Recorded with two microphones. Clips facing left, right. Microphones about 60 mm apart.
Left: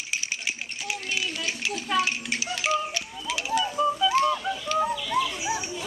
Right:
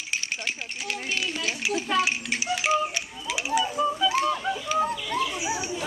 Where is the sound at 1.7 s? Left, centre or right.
Centre.